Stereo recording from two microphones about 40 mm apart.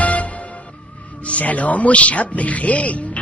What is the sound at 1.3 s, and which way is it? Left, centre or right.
Speech, left.